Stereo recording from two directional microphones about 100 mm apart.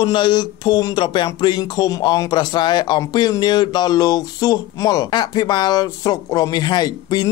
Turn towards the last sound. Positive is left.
turn(degrees=40)  # may be behind; listen again after turning